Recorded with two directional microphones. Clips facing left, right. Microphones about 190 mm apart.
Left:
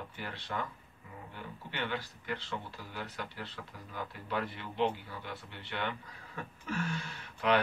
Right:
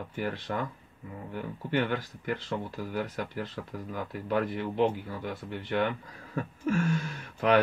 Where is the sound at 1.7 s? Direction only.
45° right (ahead or behind).